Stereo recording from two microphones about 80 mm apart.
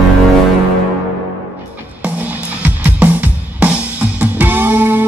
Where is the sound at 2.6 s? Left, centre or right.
Centre.